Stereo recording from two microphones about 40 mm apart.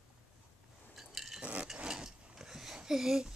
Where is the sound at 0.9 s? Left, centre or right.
Centre.